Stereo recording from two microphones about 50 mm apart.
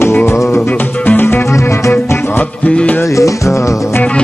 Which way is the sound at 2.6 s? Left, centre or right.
Left.